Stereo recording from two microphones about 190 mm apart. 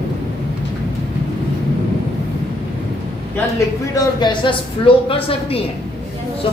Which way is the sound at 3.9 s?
25° left (ahead or behind).